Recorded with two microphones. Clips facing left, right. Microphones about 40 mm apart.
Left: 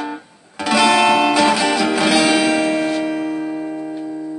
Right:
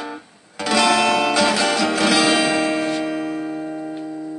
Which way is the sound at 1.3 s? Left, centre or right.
Centre.